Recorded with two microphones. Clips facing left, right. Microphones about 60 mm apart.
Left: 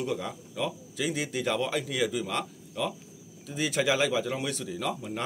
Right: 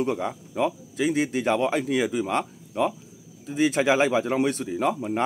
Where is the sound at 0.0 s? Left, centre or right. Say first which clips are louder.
Right 6 dB; right.